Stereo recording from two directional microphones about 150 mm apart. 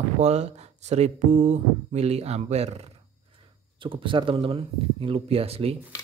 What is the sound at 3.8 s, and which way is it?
Speech, 35° right (ahead or behind).